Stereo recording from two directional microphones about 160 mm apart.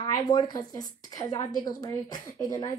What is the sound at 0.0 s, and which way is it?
A woman's voice, 25° left (ahead or behind).